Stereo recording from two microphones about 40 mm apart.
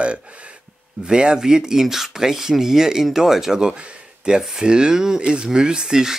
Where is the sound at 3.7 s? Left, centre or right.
Right.